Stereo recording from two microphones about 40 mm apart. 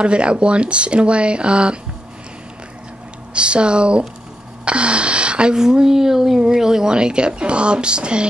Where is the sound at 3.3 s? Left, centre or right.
Right.